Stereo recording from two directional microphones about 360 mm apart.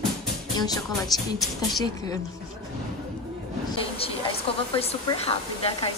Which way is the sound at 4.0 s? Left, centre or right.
Centre.